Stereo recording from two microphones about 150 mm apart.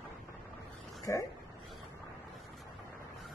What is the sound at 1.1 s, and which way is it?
Speech, 20° left (ahead or behind).